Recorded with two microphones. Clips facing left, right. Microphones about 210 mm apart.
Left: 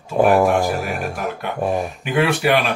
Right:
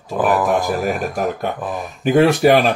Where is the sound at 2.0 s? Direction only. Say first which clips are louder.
Right 6 dB; 40° right (ahead or behind).